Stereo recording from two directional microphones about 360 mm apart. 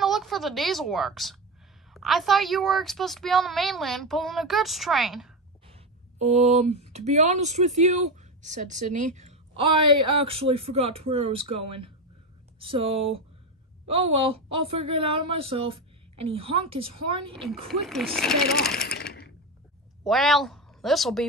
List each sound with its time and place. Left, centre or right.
0.0 s a woman's voice: centre
6.1 s speech: centre
9.7 s speech: right
10.1 s a woman's voice: centre
12.5 s a woman's voice: centre
14.6 s a woman's voice: centre
17.6 s a woman's voice: centre
18.9 s sewing machine: left
20.0 s speech: centre